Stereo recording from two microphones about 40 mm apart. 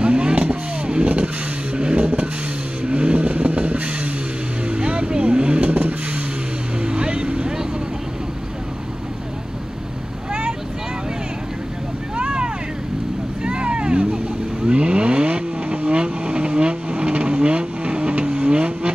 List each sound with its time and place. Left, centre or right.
0.0 s vehicle: right
5.7 s vehicle: right
6.8 s vehicle: right
12.2 s vehicle: right